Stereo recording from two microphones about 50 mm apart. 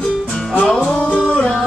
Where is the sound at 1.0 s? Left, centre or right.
Left.